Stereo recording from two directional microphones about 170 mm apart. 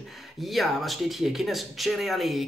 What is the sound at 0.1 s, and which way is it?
Speech, centre (ahead or behind).